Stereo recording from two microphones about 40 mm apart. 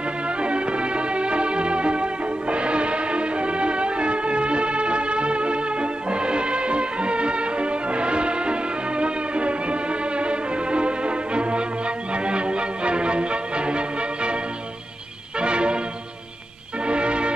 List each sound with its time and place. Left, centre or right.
0.4 s music: right
16.8 s music: right